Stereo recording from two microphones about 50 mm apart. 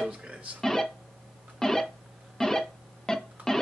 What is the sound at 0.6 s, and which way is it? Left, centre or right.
Speech, centre.